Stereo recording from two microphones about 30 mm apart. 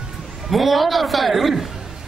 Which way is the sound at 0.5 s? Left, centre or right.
Centre.